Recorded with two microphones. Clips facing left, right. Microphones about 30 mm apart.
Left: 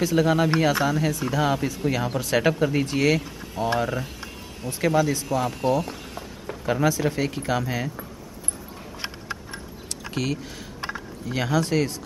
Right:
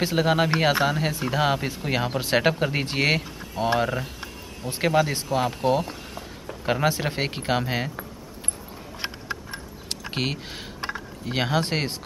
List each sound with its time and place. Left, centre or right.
0.0 s speech: right
4.6 s speech: right
9.0 s a sound: centre
10.1 s speech: right